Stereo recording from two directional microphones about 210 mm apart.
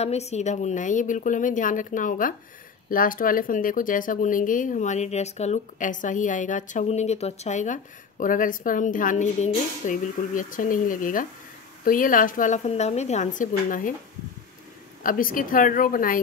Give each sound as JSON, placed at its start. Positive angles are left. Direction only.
{"t": 0.0, "sound": "speech", "side_deg": 30}
{"t": 15.0, "sound": "speech", "side_deg": 40}